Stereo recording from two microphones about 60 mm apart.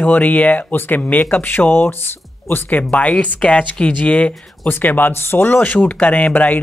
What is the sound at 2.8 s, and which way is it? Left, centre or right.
Speech, left.